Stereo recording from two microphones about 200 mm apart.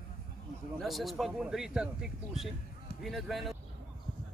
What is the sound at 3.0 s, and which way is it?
Speech, centre (ahead or behind).